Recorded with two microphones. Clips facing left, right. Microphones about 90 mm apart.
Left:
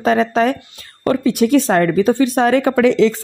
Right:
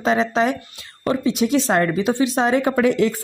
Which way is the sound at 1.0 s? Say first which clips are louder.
Left 4 dB; 60° left (ahead or behind).